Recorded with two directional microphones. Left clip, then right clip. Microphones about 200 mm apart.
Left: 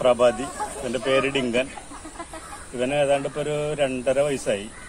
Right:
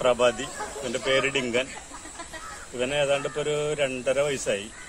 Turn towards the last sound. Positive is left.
turn(degrees=-20)  # may be behind; listen again after turning